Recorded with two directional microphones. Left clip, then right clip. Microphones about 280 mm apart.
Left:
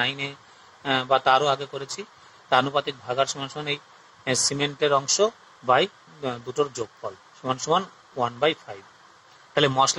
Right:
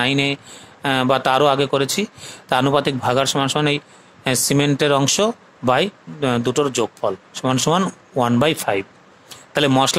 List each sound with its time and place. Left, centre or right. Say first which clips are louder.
0.0 s speech: right 8 dB; right